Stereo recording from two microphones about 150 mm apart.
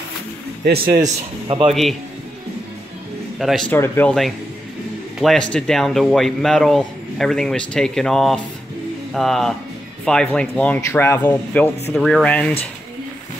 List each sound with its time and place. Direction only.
0.7 s a man's voice: 70° right (ahead or behind)
1.7 s a man's voice: centre (ahead or behind)
3.3 s a man's voice: centre (ahead or behind)
3.7 s speech: 15° left (ahead or behind)
5.2 s a man's voice: 5° left (ahead or behind)
11.9 s a man's voice: 5° left (ahead or behind)